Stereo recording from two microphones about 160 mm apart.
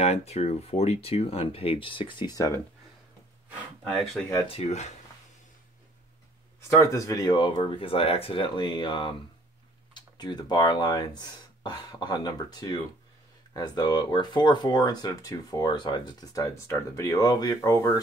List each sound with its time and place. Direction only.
0.0 s speech: 40° left (ahead or behind); by 2.6 s 20° left (ahead or behind)
4.5 s speech: 40° left (ahead or behind)
6.7 s speech: 20° left (ahead or behind)